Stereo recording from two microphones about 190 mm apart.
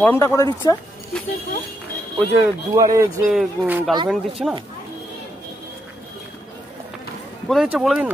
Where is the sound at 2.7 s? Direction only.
15° right (ahead or behind).